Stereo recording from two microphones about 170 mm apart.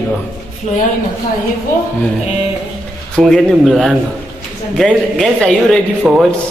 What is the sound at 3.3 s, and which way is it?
Speech, 5° left (ahead or behind).